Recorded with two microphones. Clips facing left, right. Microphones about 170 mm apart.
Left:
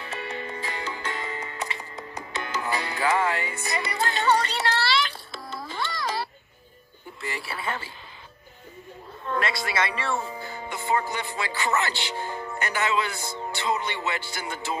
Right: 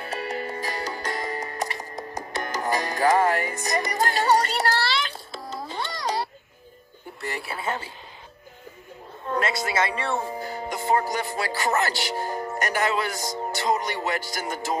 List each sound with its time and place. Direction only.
0.0 s music: 40° right (ahead or behind)
7.2 s speech: 50° right (ahead or behind)
9.4 s speech: 45° right (ahead or behind)
13.4 s music: 40° right (ahead or behind)